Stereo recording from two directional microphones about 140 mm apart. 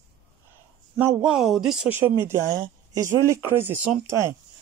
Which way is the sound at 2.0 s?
15° right (ahead or behind).